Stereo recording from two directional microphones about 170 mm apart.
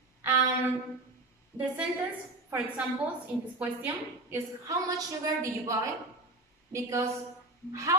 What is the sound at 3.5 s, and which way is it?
A woman's voice, 10° right (ahead or behind).